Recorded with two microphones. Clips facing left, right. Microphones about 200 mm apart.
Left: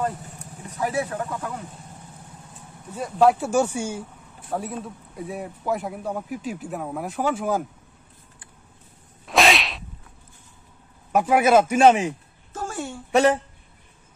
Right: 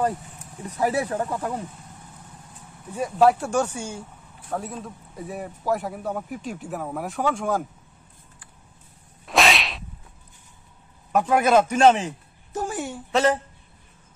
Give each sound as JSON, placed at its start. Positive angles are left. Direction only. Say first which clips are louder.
{"t": 0.7, "sound": "speech", "louder": "right 2 dB", "side_deg": -35}
{"t": 2.9, "sound": "a man's voice", "louder": "even", "side_deg": -5}
{"t": 9.2, "sound": "whip", "louder": "left 2 dB", "side_deg": 0}
{"t": 11.1, "sound": "speech", "louder": "left 1 dB", "side_deg": 10}
{"t": 12.5, "sound": "a sound", "louder": "right 2 dB", "side_deg": -15}
{"t": 13.1, "sound": "speech", "louder": "left 3 dB", "side_deg": 15}